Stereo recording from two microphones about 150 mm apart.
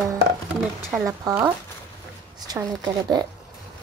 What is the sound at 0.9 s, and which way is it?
Speech, 5° right (ahead or behind).